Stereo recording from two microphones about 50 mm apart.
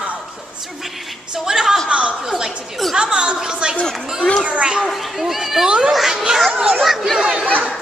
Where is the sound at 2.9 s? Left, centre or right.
Centre.